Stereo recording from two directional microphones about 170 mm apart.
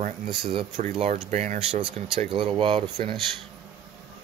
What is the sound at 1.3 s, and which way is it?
Speech, 40° right (ahead or behind).